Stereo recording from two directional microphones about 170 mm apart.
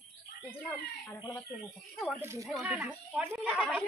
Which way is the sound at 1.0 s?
25° left (ahead or behind).